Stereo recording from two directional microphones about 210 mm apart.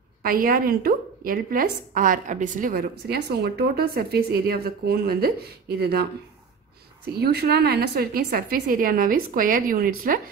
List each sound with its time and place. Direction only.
0.2 s a woman's voice: 45° right (ahead or behind)
7.2 s a woman's voice: 50° right (ahead or behind)